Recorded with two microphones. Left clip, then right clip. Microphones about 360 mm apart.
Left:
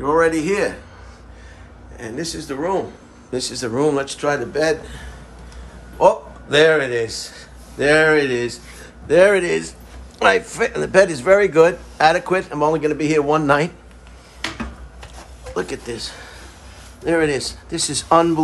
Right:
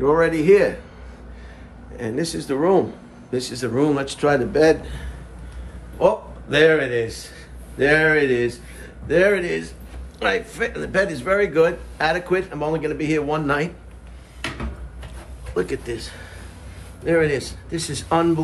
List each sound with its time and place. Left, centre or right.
0.0 s a man's voice: centre
2.0 s a man's voice: centre
3.3 s a man's voice: centre
5.9 s a man's voice: centre
15.5 s speech: centre